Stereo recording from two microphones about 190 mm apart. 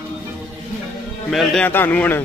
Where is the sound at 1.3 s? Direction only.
5° left (ahead or behind).